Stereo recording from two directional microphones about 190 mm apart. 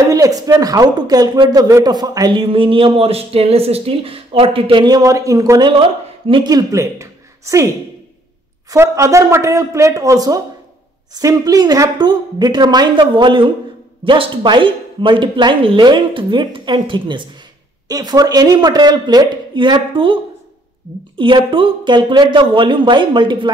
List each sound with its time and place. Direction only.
0.0 s speech: 20° right (ahead or behind)
8.6 s speech: 15° right (ahead or behind)
21.2 s speech: 25° right (ahead or behind)